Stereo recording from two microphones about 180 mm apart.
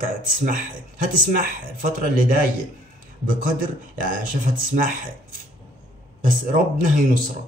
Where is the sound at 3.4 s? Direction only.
50° right (ahead or behind).